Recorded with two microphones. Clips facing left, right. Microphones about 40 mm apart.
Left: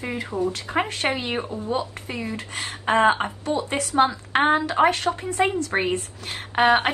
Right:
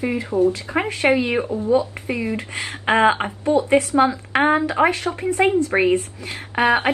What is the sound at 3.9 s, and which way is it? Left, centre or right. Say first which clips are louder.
Speech: right 2 dB; right.